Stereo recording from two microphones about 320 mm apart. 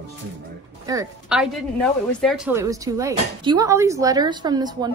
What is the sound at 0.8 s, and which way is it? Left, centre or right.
Speech, centre.